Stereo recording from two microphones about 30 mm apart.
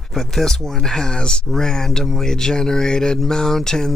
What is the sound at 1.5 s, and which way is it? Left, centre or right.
Speech, centre.